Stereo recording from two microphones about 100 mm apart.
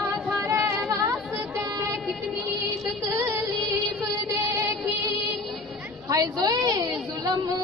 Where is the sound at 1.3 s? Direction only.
30° right (ahead or behind).